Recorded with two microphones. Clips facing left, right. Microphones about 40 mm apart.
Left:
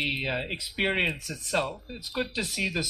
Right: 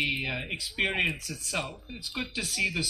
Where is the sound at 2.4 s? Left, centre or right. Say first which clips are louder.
Even; centre.